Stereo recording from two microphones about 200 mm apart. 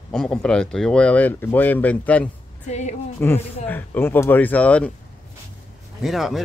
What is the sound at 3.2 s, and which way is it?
Speech, 10° left (ahead or behind).